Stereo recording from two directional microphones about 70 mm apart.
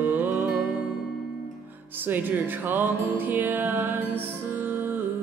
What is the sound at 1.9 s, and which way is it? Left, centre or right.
Music, right.